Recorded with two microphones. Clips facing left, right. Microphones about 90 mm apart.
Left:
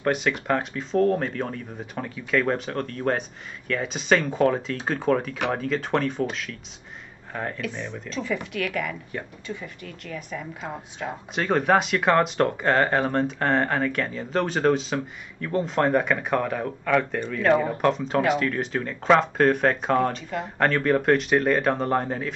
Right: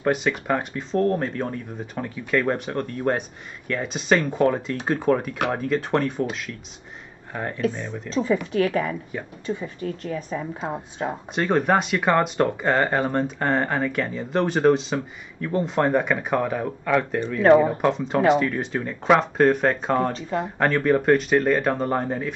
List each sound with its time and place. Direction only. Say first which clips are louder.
0.0 s speech: right 1 dB; centre (ahead or behind)
8.1 s speech: right 7 dB; 30° right (ahead or behind)
9.1 s speech: right 1 dB; 5° right (ahead or behind)
9.5 s speech: right 11 dB; 30° right (ahead or behind)
11.1 s speech: right 1 dB; centre (ahead or behind)
20.2 s speech: right 4 dB; 35° right (ahead or behind)
20.4 s speech: right 1 dB; 5° right (ahead or behind)